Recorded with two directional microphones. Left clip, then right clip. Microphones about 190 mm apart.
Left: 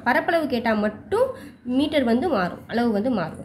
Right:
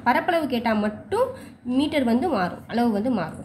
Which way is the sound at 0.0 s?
5° left (ahead or behind).